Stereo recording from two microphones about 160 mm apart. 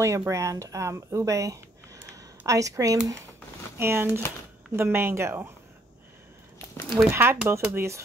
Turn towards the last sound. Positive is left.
turn(degrees=-15)  # may be behind; listen again after turning